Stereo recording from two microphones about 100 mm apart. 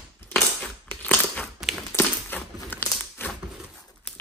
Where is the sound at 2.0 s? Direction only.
20° left (ahead or behind).